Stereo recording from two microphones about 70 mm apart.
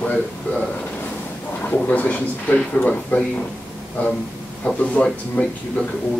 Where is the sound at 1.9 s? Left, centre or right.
Left.